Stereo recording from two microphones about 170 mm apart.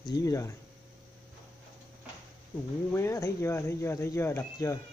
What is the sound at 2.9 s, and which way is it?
Speech, 15° left (ahead or behind).